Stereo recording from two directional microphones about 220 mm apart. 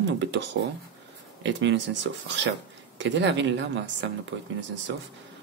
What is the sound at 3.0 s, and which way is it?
Speech, 55° right (ahead or behind).